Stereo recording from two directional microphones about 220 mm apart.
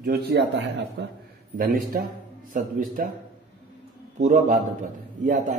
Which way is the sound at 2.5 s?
40° right (ahead or behind).